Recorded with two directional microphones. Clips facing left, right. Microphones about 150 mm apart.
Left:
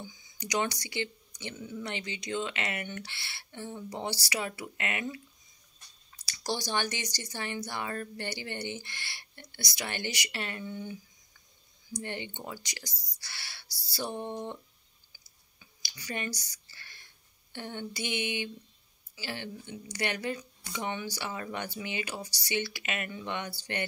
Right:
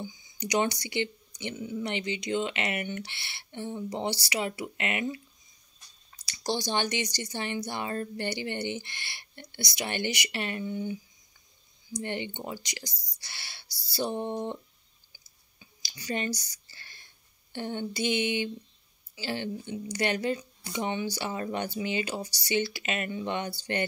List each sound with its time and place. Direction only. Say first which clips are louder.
0.0 s speech: right 6 dB; 25° right (ahead or behind)
6.2 s speech: right 3 dB; 25° right (ahead or behind)
12.0 s speech: right 5 dB; 25° right (ahead or behind)
15.6 s a sound: right 5 dB; 25° right (ahead or behind)
17.5 s speech: right 5 dB; 30° right (ahead or behind)